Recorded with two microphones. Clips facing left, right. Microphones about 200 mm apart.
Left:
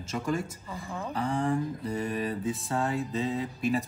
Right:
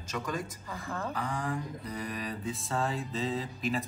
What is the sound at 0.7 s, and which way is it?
Mantra, 15° left (ahead or behind).